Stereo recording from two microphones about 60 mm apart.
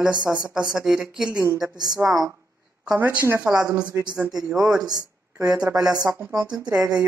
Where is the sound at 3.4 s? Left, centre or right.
Centre.